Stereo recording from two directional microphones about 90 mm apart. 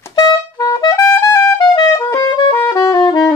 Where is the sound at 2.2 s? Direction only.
60° left (ahead or behind).